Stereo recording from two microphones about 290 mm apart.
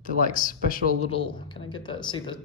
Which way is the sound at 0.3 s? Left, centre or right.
Left.